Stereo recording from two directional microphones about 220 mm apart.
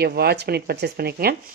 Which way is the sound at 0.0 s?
45° right (ahead or behind).